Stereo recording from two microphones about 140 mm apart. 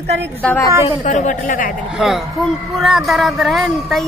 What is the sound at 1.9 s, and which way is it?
A woman's voice, 5° right (ahead or behind).